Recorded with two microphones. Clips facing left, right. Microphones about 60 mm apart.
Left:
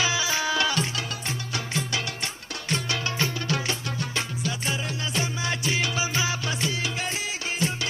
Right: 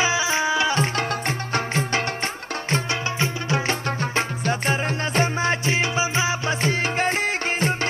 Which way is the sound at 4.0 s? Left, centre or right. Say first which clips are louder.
Right 5 dB; right.